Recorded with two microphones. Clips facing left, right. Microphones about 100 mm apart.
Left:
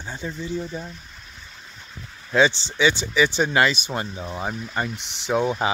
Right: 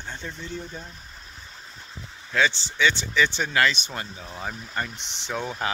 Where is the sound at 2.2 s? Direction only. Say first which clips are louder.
Left 5 dB; 20° left (ahead or behind).